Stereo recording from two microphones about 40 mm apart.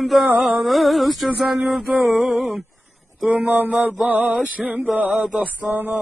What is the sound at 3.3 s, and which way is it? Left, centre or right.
Mantra, right.